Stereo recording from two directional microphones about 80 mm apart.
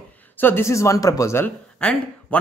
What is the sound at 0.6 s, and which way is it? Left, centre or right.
Speech, left.